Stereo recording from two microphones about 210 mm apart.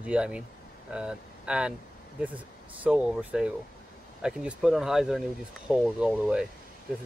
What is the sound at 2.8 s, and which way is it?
Speech, 5° right (ahead or behind).